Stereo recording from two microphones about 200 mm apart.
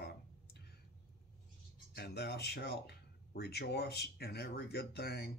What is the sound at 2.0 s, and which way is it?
Speech, 55° left (ahead or behind).